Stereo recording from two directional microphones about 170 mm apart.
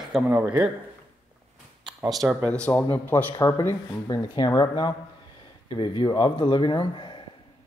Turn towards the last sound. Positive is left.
turn(degrees=30)  # may be behind; listen again after turning